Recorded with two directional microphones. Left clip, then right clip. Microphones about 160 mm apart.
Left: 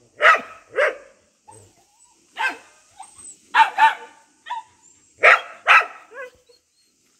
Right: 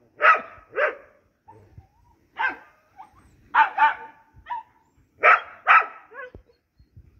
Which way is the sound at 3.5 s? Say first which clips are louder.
Left 3 dB; 45° right (ahead or behind).